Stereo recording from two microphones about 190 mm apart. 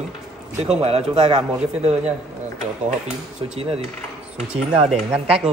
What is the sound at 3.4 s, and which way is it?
Speech, 35° right (ahead or behind).